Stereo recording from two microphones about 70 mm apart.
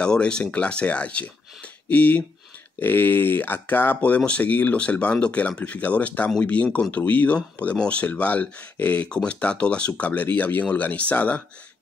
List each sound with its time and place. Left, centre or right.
0.0 s speech: centre